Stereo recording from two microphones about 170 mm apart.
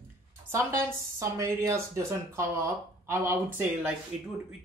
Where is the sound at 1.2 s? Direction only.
15° right (ahead or behind).